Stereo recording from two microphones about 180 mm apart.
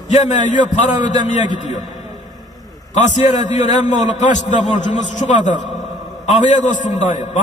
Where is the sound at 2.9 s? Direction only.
40° left (ahead or behind).